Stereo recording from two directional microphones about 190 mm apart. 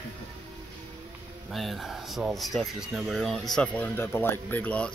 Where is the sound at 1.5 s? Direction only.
Centre (ahead or behind).